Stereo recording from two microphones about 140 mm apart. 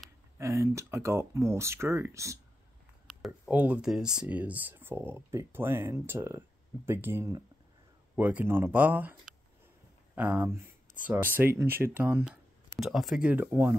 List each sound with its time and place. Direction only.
0.4 s speech: 20° right (ahead or behind)
12.7 s speech: centre (ahead or behind)